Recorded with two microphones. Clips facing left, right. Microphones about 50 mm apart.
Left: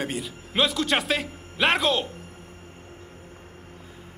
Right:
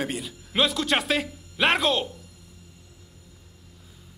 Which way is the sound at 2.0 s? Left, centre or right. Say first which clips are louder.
Left 3 dB; left.